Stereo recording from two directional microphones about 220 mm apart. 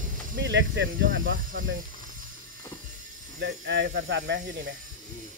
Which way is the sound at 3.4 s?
50° right (ahead or behind).